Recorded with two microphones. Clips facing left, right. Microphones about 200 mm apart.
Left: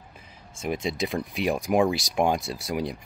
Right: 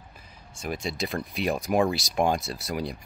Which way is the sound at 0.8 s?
15° left (ahead or behind).